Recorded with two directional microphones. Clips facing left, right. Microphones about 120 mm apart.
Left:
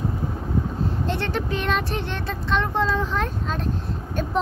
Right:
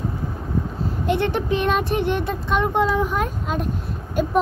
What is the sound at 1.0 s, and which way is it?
Speech, 15° right (ahead or behind).